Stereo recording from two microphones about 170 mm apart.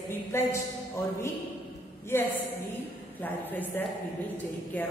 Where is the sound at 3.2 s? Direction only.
10° left (ahead or behind).